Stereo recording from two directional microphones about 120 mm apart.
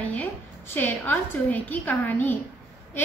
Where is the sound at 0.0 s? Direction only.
10° left (ahead or behind).